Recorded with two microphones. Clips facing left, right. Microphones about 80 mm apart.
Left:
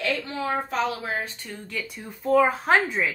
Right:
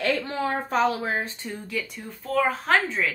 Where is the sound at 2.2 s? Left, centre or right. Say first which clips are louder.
Left 4 dB; centre.